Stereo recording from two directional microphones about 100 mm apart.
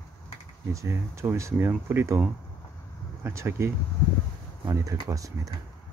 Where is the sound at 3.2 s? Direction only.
25° right (ahead or behind).